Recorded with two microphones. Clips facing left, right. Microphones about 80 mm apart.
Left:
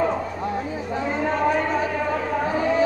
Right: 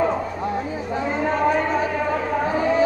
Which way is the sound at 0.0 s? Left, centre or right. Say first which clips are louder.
Right 1 dB; right.